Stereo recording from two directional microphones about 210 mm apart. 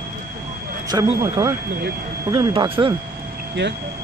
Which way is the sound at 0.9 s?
20° right (ahead or behind).